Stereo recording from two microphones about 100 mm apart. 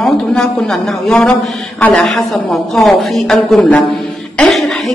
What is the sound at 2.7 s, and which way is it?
A man's voice, centre (ahead or behind).